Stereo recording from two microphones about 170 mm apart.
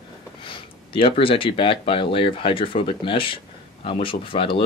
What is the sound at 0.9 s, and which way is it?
Speech, 30° left (ahead or behind).